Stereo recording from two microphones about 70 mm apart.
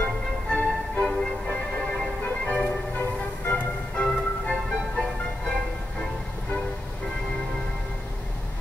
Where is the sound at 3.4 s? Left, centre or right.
Left.